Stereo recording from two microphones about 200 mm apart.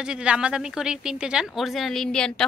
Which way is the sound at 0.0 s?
5° right (ahead or behind).